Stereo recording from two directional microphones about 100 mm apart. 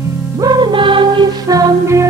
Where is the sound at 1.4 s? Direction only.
35° right (ahead or behind).